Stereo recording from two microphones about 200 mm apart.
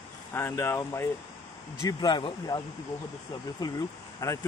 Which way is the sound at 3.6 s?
20° left (ahead or behind).